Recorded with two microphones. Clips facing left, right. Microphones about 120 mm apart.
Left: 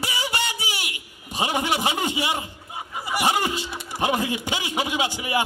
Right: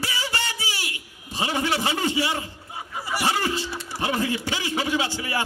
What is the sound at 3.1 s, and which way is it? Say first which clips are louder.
Speech: left 2 dB; 15° left (ahead or behind).